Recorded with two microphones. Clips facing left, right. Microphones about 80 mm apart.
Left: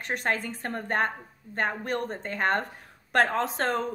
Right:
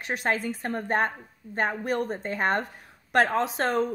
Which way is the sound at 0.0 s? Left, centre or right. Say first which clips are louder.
Right 2 dB; centre.